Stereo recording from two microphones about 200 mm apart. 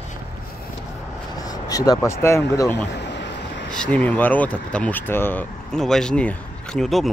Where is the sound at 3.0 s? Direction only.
60° left (ahead or behind).